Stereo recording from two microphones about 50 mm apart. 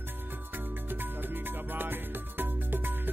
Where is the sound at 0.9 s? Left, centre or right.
Right.